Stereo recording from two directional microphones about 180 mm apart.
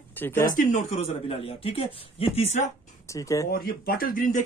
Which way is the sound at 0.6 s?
45° left (ahead or behind).